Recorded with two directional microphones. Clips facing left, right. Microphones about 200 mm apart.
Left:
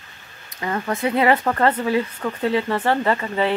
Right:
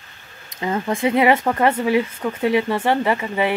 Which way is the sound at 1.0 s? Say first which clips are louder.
Right 2 dB; 15° right (ahead or behind).